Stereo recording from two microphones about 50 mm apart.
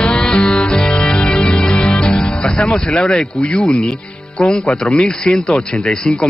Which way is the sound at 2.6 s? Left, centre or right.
Centre.